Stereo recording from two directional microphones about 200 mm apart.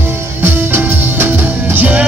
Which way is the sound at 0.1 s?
10° right (ahead or behind).